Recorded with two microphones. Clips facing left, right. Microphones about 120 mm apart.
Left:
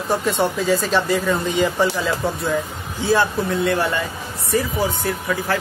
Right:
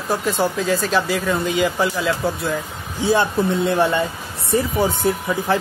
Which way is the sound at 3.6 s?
25° right (ahead or behind).